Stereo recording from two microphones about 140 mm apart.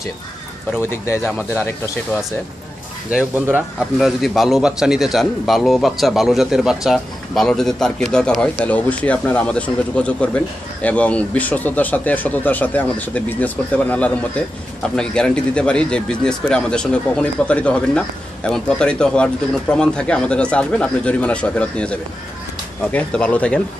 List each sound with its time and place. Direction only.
0.7 s a man's voice: 20° left (ahead or behind)
3.1 s speech: 10° right (ahead or behind)
4.2 s a man's voice: centre (ahead or behind)